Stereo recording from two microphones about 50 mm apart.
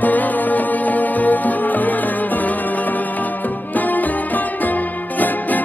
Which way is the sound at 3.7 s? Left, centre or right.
Left.